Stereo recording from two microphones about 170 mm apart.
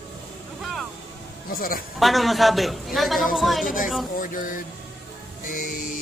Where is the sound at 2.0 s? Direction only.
Centre (ahead or behind).